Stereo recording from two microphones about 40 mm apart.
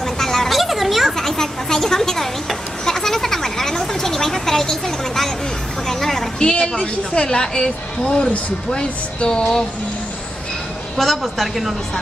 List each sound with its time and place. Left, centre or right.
0.0 s a sound: centre
0.5 s children playing: centre
1.2 s a sound: centre
6.4 s a woman's voice: left
11.0 s a woman's voice: centre
11.4 s speech: centre